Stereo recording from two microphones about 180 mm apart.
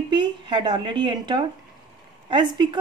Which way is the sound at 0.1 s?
25° right (ahead or behind).